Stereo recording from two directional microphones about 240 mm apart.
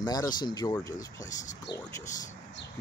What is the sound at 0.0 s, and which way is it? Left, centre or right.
Speech, centre.